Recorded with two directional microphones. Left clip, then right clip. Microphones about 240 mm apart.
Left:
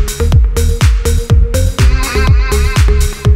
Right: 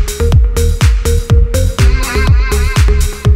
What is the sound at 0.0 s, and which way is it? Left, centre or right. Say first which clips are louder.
Music: right 1 dB; centre.